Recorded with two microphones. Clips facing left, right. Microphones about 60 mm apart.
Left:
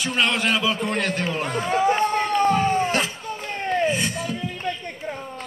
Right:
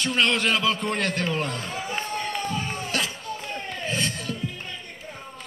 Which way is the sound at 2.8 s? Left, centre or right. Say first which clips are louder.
Left 6 dB; left.